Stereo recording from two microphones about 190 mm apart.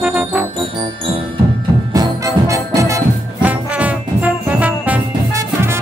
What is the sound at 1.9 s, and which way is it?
Brass instrument, 20° right (ahead or behind).